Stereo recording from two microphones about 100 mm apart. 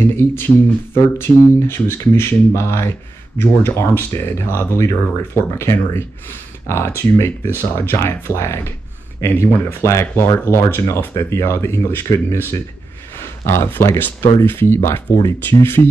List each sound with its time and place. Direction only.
0.2 s speech: 25° left (ahead or behind)